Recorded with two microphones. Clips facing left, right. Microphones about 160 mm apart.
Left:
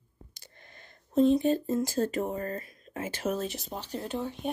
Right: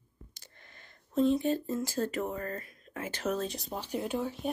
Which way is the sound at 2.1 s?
30° left (ahead or behind).